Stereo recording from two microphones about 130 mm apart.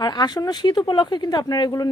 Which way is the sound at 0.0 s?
35° left (ahead or behind).